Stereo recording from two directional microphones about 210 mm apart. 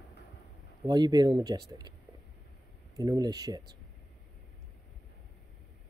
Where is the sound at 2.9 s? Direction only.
15° right (ahead or behind).